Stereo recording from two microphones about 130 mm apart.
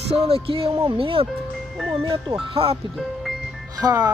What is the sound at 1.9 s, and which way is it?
Speech, 40° right (ahead or behind).